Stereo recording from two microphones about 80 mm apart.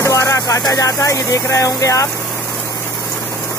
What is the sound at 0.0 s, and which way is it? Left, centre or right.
Speech, left.